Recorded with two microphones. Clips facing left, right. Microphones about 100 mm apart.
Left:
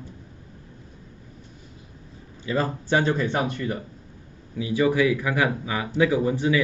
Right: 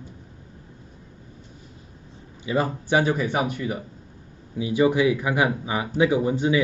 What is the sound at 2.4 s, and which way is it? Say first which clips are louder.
A man's voice: right 1 dB; 15° right (ahead or behind).